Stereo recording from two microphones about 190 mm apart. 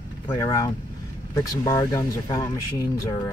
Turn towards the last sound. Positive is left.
turn(degrees=20)  # may be behind; listen again after turning